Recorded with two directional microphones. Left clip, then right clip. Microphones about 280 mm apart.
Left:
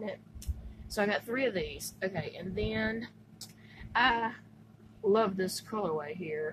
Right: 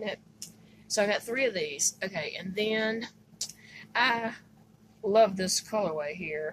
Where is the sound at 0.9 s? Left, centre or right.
Centre.